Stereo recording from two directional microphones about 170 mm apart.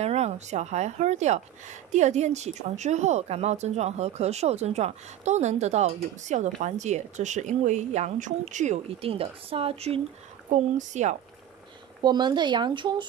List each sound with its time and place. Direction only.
0.0 s speech: 40° right (ahead or behind)
12.0 s speech: 25° right (ahead or behind)